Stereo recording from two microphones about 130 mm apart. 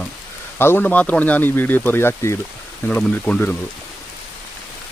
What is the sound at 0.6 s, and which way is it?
Speech, 15° left (ahead or behind).